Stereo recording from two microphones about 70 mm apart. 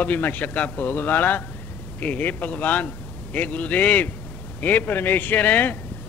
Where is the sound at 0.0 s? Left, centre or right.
Left.